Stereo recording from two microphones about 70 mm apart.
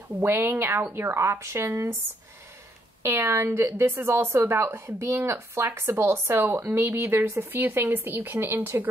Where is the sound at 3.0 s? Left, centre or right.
Right.